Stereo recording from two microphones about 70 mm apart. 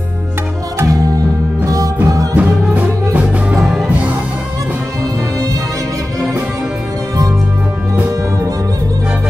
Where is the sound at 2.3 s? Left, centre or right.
Right.